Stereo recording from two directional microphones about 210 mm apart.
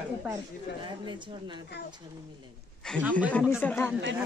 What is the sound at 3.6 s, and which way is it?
Speech, 10° left (ahead or behind).